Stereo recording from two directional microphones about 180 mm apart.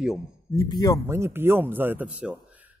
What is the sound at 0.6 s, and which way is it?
Speech, 20° left (ahead or behind).